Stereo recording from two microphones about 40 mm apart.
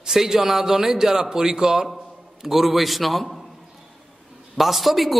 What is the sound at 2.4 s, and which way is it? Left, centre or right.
Mantra, centre.